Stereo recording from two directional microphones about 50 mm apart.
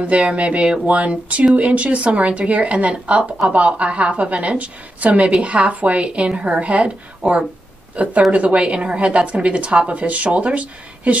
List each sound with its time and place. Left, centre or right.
0.0 s a woman's voice: right